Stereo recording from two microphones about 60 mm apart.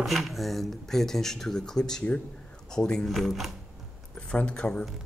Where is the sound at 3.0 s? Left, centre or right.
Centre.